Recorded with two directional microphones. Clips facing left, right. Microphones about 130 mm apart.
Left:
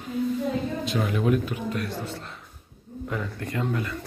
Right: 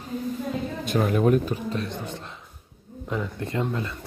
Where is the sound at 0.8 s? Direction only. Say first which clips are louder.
Right 5 dB; 45° right (ahead or behind).